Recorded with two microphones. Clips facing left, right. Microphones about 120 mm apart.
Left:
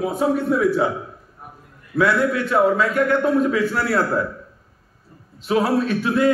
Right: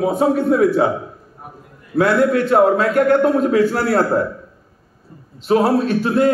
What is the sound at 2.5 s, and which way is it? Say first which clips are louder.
A man's voice: right 2 dB; 60° right (ahead or behind).